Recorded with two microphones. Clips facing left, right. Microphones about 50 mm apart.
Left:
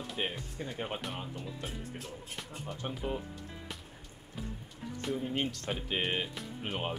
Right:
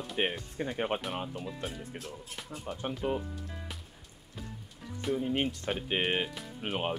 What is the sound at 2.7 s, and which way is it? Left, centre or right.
Speech, centre.